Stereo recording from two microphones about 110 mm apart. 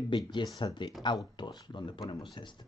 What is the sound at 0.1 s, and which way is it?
Speech, 40° left (ahead or behind).